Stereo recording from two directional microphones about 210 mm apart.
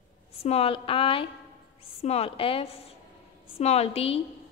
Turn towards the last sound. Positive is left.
turn(degrees=30)  # may be behind; listen again after turning